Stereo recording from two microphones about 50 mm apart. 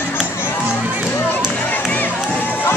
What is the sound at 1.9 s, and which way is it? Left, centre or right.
Crowd, left.